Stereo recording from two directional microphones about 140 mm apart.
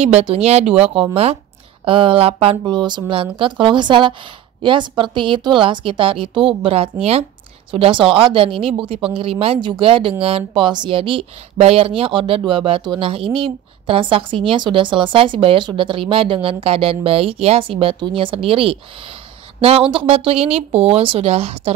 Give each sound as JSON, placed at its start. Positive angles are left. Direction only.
{"t": 0.0, "sound": "speech", "side_deg": -45}